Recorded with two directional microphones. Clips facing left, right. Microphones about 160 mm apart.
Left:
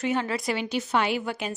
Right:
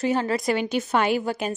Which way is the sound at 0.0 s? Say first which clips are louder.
Right 4 dB; 35° right (ahead or behind).